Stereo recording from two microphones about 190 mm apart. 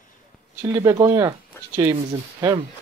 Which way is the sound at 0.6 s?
20° right (ahead or behind).